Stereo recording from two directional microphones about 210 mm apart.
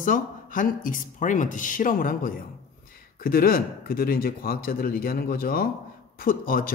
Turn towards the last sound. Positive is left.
turn(degrees=45)  # may be behind; listen again after turning